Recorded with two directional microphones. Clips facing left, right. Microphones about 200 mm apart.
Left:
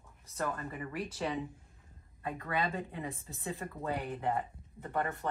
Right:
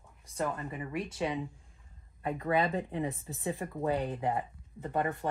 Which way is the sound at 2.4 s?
25° right (ahead or behind).